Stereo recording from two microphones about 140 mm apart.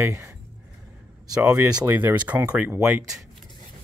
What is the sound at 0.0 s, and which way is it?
Speech, 15° right (ahead or behind).